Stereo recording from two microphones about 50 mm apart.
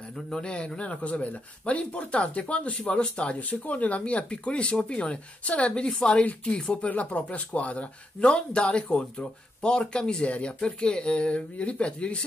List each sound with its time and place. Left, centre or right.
0.3 s speech: centre